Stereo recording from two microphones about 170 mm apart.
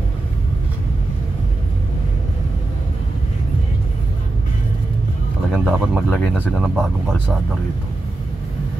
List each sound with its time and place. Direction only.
5.5 s speech: 5° left (ahead or behind)
6.5 s speech: centre (ahead or behind)